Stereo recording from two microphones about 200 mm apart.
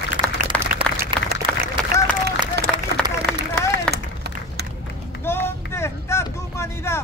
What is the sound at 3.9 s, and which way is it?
Run, 55° right (ahead or behind).